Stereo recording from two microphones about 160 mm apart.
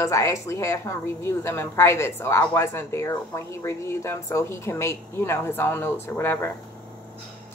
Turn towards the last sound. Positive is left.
turn(degrees=15)  # may be behind; listen again after turning